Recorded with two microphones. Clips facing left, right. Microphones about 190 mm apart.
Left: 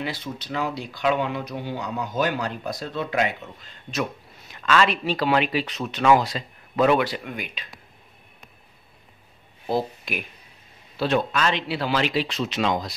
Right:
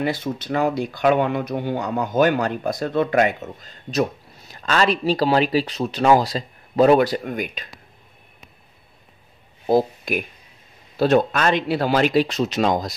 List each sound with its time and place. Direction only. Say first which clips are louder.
0.0 s speech: right 7 dB; 50° right (ahead or behind)
9.7 s speech: right 7 dB; 45° right (ahead or behind)